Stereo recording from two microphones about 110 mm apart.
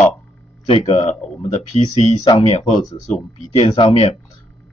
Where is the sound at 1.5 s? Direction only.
85° left.